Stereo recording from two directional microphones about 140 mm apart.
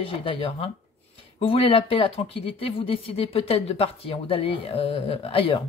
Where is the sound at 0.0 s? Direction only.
40° left (ahead or behind).